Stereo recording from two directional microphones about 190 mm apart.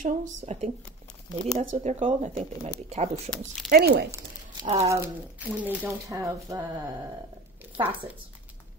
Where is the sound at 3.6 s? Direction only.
55° right (ahead or behind).